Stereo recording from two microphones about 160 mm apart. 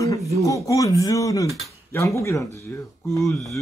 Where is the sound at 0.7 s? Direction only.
20° left (ahead or behind).